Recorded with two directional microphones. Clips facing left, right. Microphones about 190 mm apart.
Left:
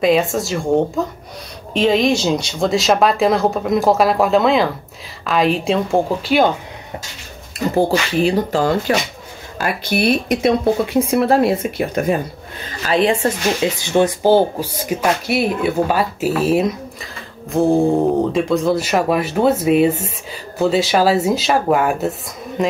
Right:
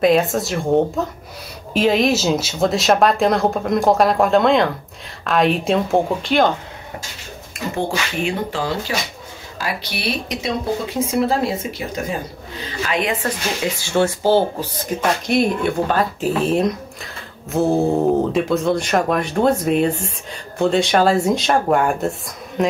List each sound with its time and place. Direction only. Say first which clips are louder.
0.0 s speech: even; centre (ahead or behind)
7.5 s speech: left 7 dB; 35° left (ahead or behind); by 12.2 s 60° left (ahead or behind)
12.8 s speech: left 6 dB; 30° left (ahead or behind); by 22.7 s centre (ahead or behind)